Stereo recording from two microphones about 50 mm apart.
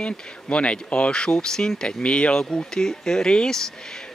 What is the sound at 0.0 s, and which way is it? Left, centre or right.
Speech, left.